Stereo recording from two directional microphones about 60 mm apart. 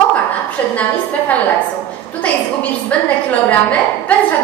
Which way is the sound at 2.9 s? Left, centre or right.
Left.